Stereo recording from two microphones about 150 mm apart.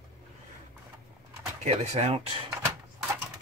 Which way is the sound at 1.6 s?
45° right (ahead or behind).